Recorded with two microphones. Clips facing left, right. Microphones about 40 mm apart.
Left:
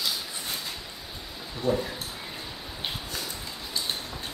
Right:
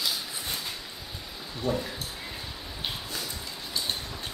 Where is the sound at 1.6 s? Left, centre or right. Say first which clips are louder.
Left 3 dB; centre.